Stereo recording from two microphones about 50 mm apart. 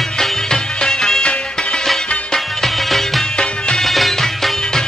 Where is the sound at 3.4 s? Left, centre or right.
Centre.